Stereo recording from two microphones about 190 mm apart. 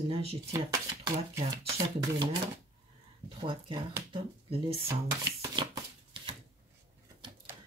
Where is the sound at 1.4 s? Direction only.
30° right (ahead or behind).